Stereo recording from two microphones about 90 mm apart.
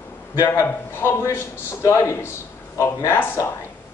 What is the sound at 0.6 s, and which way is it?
A man's voice, 25° left (ahead or behind).